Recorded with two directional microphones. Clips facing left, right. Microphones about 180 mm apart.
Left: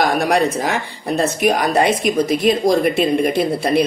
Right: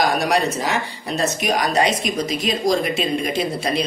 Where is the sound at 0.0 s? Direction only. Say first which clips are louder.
Left 3 dB; 55° left (ahead or behind).